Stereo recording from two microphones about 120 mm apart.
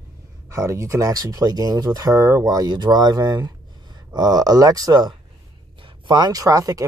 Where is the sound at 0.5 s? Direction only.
25° right (ahead or behind).